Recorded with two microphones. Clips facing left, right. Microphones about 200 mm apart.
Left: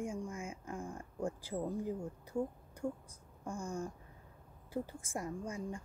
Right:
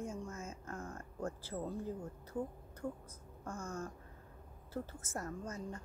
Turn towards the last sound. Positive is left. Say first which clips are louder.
# left 3 dB
turn(degrees=10)  # may be behind; listen again after turning